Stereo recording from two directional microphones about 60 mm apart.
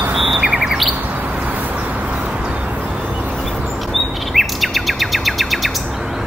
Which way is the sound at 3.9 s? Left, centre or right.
Centre.